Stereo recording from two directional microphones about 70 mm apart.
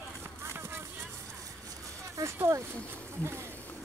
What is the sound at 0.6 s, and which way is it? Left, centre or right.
Vehicle, right.